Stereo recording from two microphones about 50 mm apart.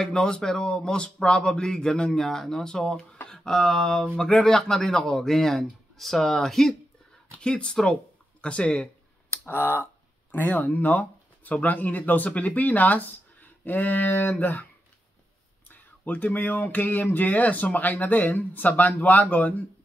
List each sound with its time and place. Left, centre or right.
0.0 s speech: centre
2.2 s speech: centre
7.2 s speech: left
8.4 s a sound: left
9.5 s speech: left
10.3 s speech: left
15.7 s speech: left